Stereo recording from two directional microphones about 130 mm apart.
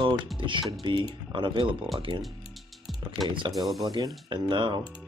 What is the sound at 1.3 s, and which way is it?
Speech, 40° right (ahead or behind).